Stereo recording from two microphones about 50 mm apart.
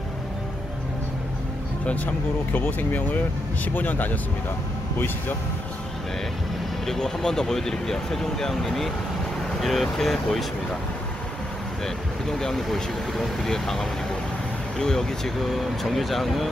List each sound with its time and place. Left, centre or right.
2.5 s speech: left
6.9 s speech: centre
11.8 s speech: centre